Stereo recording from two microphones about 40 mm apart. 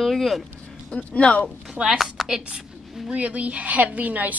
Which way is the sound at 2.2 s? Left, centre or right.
Centre.